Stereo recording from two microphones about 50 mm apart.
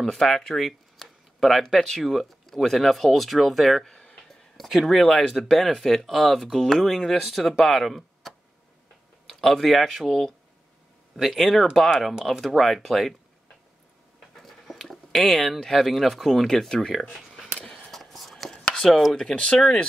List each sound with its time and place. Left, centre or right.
0.0 s speech: centre
14.3 s speech: centre
17.6 s whispering: centre
18.9 s speech: centre
19.3 s speech: left